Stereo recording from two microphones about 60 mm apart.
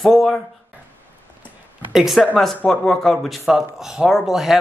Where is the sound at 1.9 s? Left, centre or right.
Centre.